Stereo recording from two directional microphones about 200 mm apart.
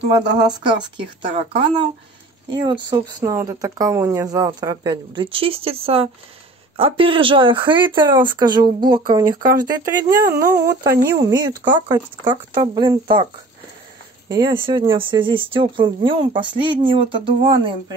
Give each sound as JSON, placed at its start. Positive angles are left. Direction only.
{"t": 0.4, "sound": "speech", "side_deg": -20}
{"t": 9.4, "sound": "speech", "side_deg": -45}
{"t": 9.7, "sound": "speech", "side_deg": -15}
{"t": 14.3, "sound": "speech", "side_deg": -20}